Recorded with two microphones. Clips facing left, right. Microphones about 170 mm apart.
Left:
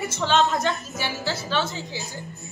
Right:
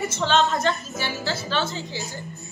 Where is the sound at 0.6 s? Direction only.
15° left (ahead or behind).